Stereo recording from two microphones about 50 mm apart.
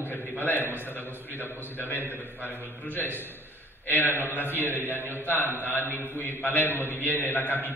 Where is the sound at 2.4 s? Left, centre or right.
Left.